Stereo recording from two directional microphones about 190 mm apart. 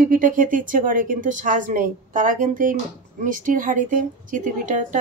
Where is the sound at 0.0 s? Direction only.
45° right (ahead or behind).